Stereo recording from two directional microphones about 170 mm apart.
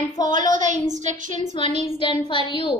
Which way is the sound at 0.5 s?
45° right (ahead or behind).